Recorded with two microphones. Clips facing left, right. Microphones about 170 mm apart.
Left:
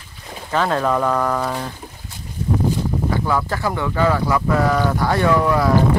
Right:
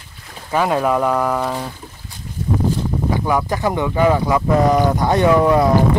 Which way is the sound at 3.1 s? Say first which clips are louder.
Right 4 dB; 15° right (ahead or behind).